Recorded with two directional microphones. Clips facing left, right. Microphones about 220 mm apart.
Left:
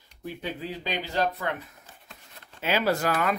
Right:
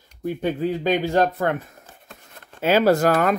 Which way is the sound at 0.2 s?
50° right (ahead or behind).